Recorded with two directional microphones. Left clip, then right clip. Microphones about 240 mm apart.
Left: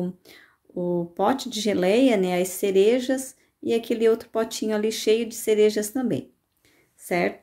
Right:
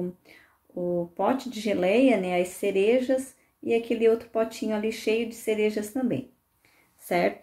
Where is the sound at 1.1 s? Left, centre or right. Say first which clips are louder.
Left 3 dB; left.